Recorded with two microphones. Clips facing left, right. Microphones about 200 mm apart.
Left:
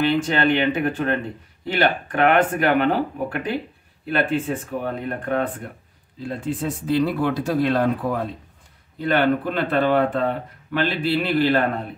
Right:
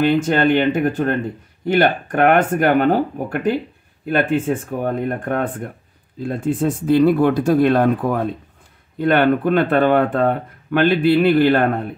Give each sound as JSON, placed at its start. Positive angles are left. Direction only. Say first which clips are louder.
{"t": 0.0, "sound": "speech", "louder": "right 4 dB", "side_deg": -50}